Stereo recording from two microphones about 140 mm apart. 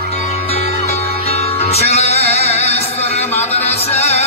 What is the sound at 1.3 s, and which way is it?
Music, 45° left (ahead or behind).